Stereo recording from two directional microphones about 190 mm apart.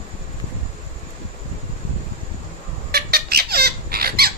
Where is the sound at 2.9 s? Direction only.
55° right (ahead or behind).